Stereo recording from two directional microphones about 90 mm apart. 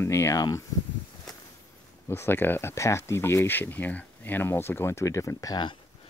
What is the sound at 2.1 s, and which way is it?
Speech, 25° left (ahead or behind).